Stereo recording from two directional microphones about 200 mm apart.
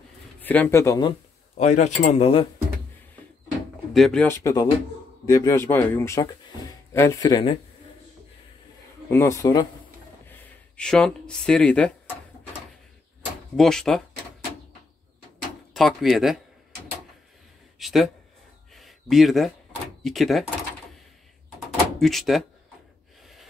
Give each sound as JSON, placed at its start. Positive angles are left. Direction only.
{"t": 0.4, "sound": "speech", "side_deg": 10}
{"t": 1.6, "sound": "speech", "side_deg": 35}
{"t": 3.9, "sound": "speech", "side_deg": 0}
{"t": 9.1, "sound": "speech", "side_deg": 15}
{"t": 13.6, "sound": "speech", "side_deg": 5}
{"t": 15.7, "sound": "speech", "side_deg": 0}
{"t": 17.7, "sound": "a sound", "side_deg": 0}
{"t": 20.0, "sound": "speech", "side_deg": 0}
{"t": 22.0, "sound": "speech", "side_deg": 0}
{"t": 23.2, "sound": "gasp", "side_deg": 0}